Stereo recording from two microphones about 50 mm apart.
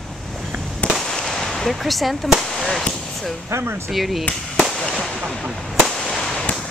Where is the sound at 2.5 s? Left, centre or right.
Centre.